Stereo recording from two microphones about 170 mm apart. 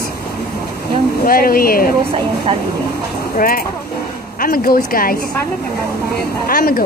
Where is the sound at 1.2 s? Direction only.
60° left (ahead or behind).